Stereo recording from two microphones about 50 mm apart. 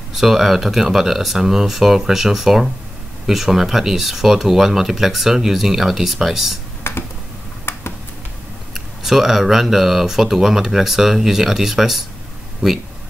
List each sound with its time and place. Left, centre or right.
0.1 s speech: centre
6.8 s a sound: left
7.7 s computer keyboard: left
8.7 s speech: centre